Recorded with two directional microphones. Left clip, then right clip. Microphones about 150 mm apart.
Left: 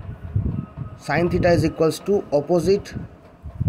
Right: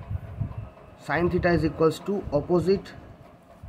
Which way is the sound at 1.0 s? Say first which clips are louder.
Left 5 dB; 25° left (ahead or behind).